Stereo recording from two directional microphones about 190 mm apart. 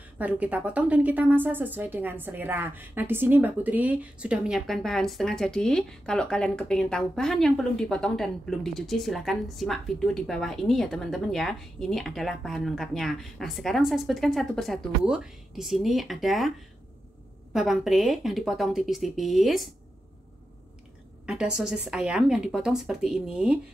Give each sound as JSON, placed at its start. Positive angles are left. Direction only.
{"t": 0.2, "sound": "a woman's voice", "side_deg": -5}
{"t": 21.3, "sound": "a woman's voice", "side_deg": -5}